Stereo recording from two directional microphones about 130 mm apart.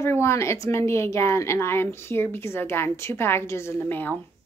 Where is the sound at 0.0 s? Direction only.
20° left (ahead or behind).